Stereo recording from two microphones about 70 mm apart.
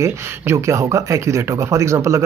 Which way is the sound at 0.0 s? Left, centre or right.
Right.